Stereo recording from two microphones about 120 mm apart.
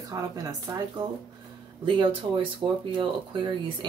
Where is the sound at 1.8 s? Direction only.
40° right (ahead or behind).